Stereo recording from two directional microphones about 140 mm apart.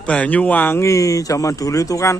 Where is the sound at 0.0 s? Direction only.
10° left (ahead or behind).